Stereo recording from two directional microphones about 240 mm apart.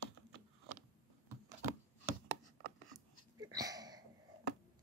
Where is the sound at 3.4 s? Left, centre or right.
Centre.